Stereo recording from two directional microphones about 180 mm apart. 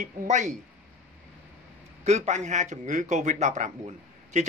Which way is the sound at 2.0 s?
40° right (ahead or behind).